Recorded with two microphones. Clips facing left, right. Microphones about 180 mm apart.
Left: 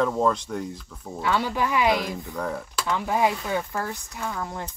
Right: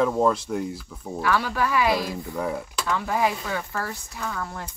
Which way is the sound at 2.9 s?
20° left (ahead or behind).